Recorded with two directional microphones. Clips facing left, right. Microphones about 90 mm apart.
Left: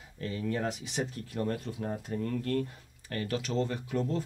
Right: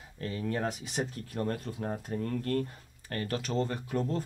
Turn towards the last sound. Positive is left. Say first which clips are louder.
# even
turn(degrees=-40)  # may be behind; listen again after turning